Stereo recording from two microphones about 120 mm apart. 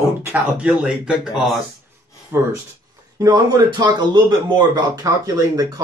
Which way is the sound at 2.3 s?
20° right (ahead or behind).